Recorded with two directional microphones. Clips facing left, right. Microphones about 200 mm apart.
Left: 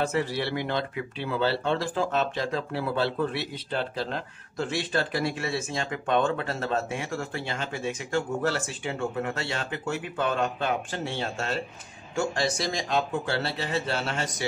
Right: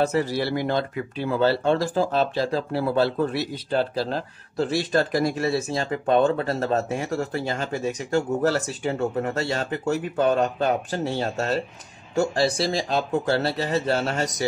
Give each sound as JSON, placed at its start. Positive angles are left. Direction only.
{"t": 0.0, "sound": "speech", "side_deg": -40}